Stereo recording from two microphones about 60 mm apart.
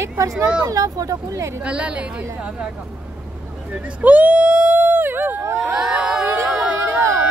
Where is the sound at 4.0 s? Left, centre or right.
Right.